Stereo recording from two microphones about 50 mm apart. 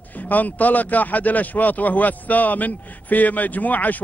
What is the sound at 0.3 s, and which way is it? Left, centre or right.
Speech, left.